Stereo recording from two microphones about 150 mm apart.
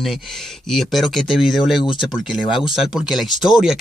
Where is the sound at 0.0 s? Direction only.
Centre (ahead or behind).